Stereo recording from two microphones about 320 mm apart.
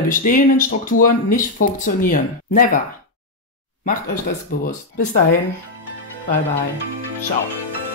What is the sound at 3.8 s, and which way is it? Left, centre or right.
Speech, left.